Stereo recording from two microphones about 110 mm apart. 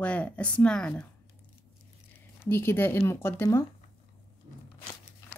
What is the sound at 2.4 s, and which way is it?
Speech, 20° left (ahead or behind).